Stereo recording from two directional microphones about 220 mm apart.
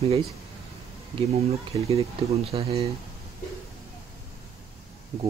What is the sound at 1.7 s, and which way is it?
Speech, 25° right (ahead or behind).